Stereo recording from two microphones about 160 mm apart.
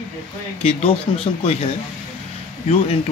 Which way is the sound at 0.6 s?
35° left (ahead or behind).